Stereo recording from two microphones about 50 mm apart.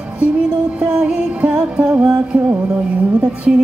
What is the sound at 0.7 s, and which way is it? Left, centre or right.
Music, right.